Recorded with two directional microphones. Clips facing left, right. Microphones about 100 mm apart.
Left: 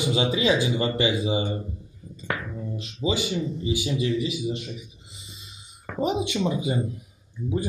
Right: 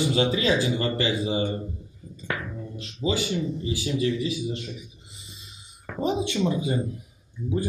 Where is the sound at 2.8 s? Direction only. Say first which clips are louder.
Even; 20° left (ahead or behind).